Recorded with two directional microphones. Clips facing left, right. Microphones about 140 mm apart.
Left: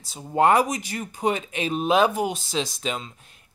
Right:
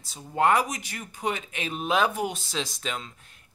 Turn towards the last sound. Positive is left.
turn(degrees=20)  # may be behind; listen again after turning